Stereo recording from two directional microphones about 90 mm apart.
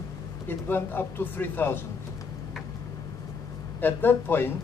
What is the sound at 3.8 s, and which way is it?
Speech, 25° left (ahead or behind).